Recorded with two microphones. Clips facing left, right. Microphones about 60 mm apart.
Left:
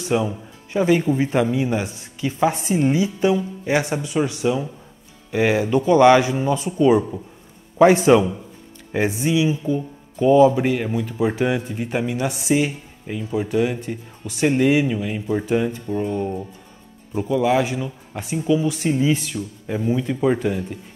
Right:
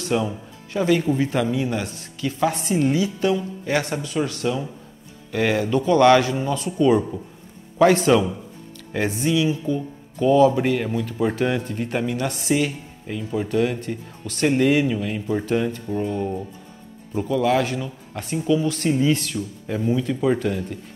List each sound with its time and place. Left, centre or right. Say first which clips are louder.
0.0 s speech: left 2 dB; centre